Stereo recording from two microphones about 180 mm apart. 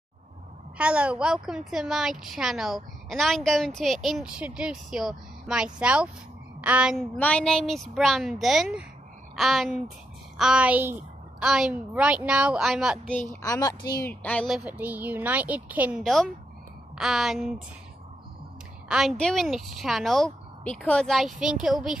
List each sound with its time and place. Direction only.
0.7 s a woman's voice: 5° right (ahead or behind)
7.2 s a woman's voice: 5° left (ahead or behind)
13.3 s a woman's voice: 20° left (ahead or behind)
14.2 s a woman's voice: 5° left (ahead or behind)
18.9 s a woman's voice: centre (ahead or behind)